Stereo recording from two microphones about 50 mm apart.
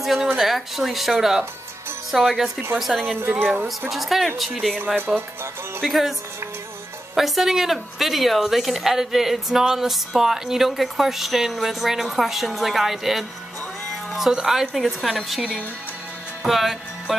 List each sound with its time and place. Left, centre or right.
0.0 s a woman's voice: centre
3.2 s speech: right
3.9 s speech: centre
4.9 s speech: right
5.8 s speech: centre
7.2 s speech: centre
16.4 s speech: centre